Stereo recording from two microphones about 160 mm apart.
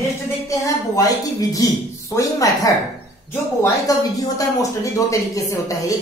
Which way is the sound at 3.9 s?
20° left (ahead or behind).